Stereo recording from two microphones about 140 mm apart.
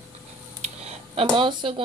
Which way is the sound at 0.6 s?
50° right (ahead or behind).